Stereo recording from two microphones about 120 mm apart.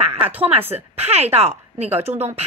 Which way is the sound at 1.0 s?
60° right (ahead or behind).